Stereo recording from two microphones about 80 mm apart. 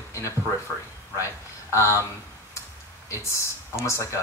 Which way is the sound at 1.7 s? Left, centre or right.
Left.